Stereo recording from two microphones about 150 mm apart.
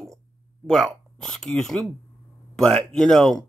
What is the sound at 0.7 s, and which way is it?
Speech, centre (ahead or behind).